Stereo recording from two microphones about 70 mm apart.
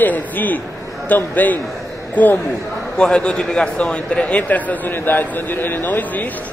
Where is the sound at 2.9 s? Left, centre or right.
Centre.